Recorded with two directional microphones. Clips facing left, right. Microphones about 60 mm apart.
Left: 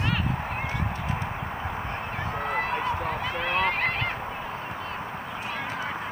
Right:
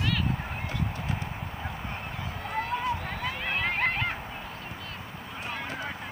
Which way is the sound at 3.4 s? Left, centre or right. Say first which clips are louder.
Left 3 dB; centre.